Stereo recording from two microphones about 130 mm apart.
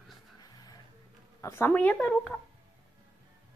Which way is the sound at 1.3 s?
20° left (ahead or behind).